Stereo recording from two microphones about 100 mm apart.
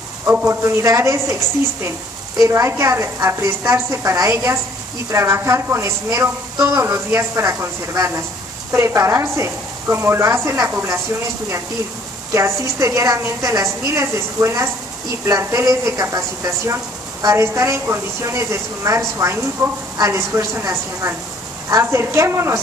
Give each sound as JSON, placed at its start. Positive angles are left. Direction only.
{"t": 0.5, "sound": "a woman's voice", "side_deg": -30}
{"t": 12.4, "sound": "a woman's voice", "side_deg": -30}